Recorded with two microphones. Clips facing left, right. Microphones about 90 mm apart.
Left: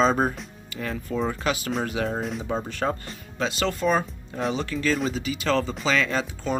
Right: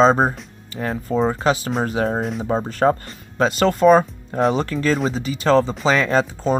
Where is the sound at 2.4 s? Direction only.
40° right (ahead or behind).